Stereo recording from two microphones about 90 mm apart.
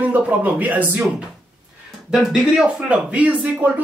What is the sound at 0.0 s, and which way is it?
Speech, 15° right (ahead or behind).